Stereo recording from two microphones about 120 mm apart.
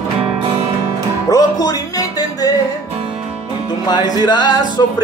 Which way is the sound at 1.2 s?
30° left (ahead or behind).